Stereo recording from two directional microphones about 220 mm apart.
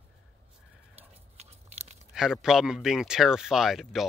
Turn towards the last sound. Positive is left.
turn(degrees=0)  # may be behind; listen again after turning